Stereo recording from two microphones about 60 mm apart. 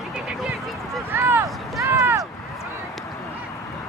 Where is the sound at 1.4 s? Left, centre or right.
Right.